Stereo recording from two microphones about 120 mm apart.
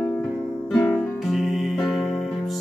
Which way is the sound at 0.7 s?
5° left (ahead or behind).